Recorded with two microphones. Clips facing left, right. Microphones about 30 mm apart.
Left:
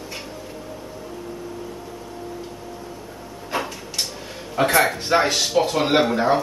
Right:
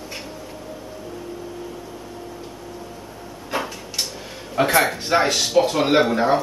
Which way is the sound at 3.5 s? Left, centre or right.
Centre.